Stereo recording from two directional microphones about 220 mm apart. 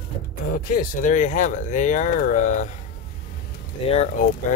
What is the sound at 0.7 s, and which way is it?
Speech, 35° left (ahead or behind).